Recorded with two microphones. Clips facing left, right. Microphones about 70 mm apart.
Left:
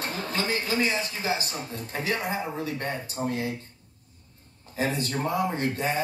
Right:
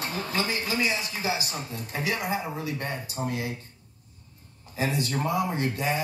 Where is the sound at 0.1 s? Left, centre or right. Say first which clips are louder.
Left 1 dB; left.